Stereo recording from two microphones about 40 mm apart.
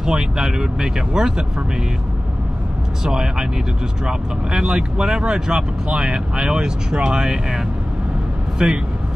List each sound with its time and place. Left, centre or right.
0.0 s speech: centre
3.0 s speech: centre